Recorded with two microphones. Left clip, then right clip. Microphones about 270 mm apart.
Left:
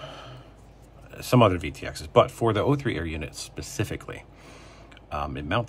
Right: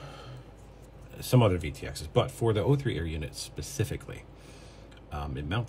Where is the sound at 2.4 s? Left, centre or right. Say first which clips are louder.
Left 4 dB; left.